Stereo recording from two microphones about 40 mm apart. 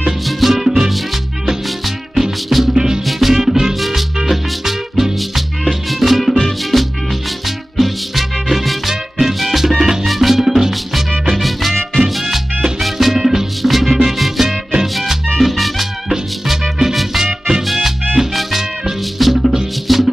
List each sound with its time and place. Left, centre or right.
0.3 s music: centre
17.2 s music: centre